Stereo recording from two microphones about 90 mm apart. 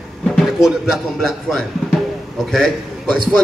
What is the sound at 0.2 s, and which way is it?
A man's voice, centre (ahead or behind).